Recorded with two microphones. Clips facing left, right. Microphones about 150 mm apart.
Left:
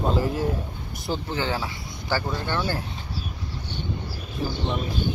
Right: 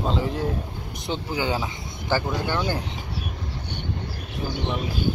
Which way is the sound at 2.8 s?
65° right (ahead or behind).